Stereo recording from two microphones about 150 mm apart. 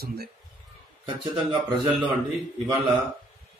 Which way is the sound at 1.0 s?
30° right (ahead or behind).